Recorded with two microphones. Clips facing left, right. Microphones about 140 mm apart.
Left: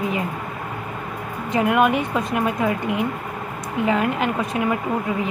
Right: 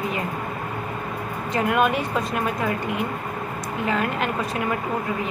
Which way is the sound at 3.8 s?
15° left (ahead or behind).